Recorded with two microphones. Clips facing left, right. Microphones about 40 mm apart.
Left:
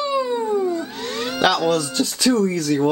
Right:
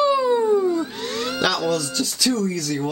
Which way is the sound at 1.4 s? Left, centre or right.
Left.